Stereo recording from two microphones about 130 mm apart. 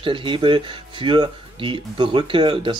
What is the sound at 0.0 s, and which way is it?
Speech, 40° right (ahead or behind).